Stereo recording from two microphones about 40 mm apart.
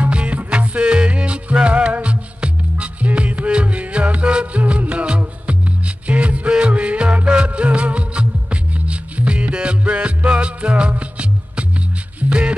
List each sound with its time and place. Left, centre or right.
0.0 s music: right